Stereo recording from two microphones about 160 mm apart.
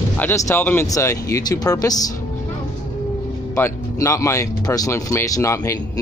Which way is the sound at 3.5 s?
15° left (ahead or behind).